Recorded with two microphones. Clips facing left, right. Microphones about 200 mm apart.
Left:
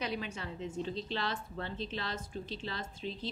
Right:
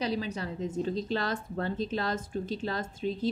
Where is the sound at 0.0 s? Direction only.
35° right (ahead or behind).